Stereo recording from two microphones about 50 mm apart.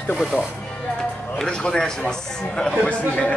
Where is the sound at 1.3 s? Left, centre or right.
Centre.